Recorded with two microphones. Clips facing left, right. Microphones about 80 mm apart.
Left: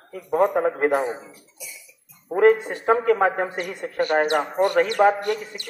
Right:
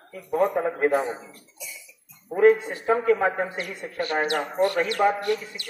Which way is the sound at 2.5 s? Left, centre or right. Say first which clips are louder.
Left 2 dB; left.